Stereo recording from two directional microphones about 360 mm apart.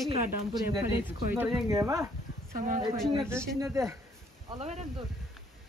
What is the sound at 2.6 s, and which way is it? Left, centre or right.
Speech, centre.